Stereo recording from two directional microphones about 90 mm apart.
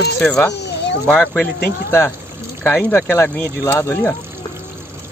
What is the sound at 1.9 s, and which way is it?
Speech, 30° left (ahead or behind).